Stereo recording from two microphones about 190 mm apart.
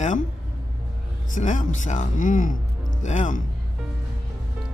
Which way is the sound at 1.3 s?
40° left (ahead or behind).